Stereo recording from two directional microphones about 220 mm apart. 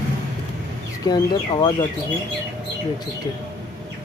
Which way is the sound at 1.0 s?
20° left (ahead or behind).